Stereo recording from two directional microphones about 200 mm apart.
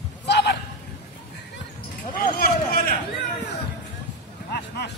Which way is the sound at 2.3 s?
45° left (ahead or behind).